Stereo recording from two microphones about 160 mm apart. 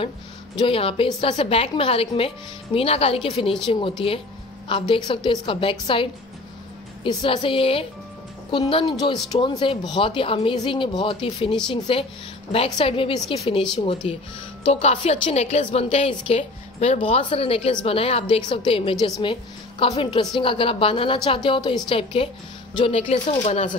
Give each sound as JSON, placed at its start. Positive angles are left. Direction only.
{"t": 0.6, "sound": "a woman's voice", "side_deg": 35}